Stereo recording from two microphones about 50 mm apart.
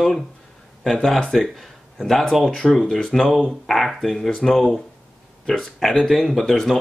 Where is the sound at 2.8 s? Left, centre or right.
Centre.